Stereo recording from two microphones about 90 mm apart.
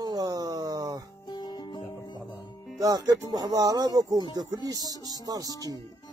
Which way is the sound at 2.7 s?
45° right (ahead or behind).